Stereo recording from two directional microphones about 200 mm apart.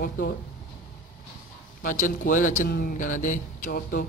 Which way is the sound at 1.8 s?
40° left (ahead or behind).